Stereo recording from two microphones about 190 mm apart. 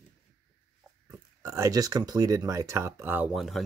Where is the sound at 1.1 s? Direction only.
15° right (ahead or behind).